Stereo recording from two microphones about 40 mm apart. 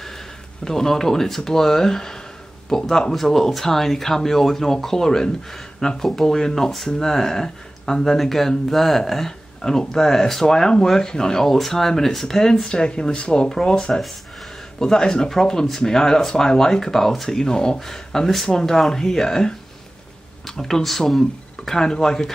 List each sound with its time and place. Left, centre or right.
0.7 s speech: centre